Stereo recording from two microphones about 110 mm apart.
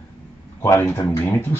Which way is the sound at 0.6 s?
25° left (ahead or behind).